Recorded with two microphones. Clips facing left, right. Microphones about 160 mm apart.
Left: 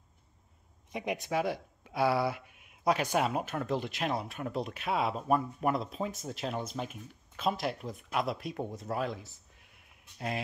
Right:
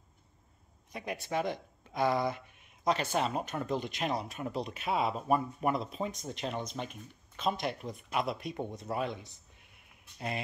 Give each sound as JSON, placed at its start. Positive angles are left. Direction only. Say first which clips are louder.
{"t": 0.9, "sound": "speech", "louder": "left 4 dB", "side_deg": 20}
{"t": 1.3, "sound": "speech", "louder": "even", "side_deg": 5}